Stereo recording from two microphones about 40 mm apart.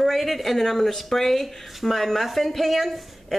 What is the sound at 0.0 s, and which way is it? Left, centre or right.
Speech, centre.